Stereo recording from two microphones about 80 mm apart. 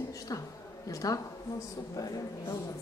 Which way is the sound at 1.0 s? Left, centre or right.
Left.